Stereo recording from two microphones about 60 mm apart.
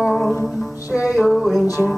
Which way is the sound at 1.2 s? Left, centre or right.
Centre.